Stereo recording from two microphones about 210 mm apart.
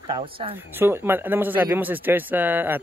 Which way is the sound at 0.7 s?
10° right (ahead or behind).